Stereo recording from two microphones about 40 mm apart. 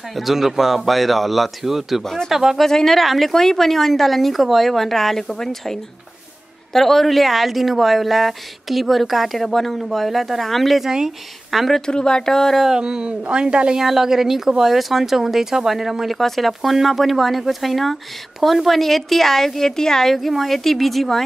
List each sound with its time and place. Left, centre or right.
0.1 s a woman's voice: centre
2.5 s a woman's voice: centre
11.8 s speech: centre
12.6 s speech: centre
13.7 s speech: centre
16.2 s a woman's voice: centre